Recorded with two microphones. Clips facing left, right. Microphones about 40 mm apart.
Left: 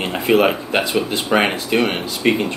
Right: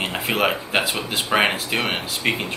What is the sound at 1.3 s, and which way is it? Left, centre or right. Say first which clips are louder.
Speech: left 1 dB; centre.